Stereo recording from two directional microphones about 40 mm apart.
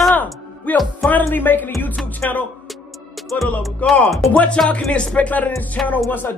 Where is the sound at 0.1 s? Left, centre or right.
Left.